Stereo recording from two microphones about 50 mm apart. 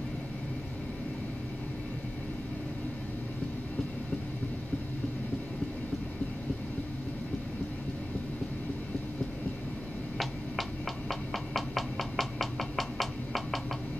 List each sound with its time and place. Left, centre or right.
11.1 s knock: centre